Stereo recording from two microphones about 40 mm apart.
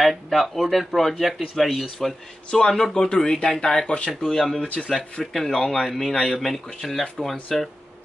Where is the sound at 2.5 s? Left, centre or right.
Centre.